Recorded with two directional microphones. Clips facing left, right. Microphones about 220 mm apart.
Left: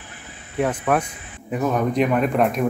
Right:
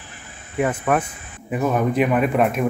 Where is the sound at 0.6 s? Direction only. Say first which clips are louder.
Even; 5° right (ahead or behind).